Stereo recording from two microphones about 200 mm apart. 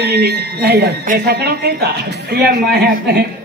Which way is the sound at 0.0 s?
55° right (ahead or behind).